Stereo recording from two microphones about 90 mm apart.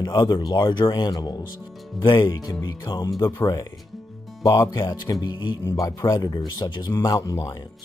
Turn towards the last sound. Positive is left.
turn(degrees=40)  # may be behind; listen again after turning